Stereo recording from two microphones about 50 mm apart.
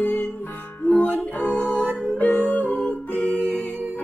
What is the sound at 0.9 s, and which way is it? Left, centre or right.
Music, left.